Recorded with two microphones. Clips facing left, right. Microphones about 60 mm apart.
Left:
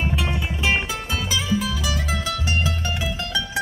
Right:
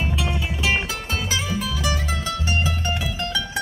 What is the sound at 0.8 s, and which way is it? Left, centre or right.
Music, left.